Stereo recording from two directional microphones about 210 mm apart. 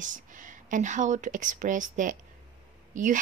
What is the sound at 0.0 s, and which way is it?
A woman's voice, 40° right (ahead or behind).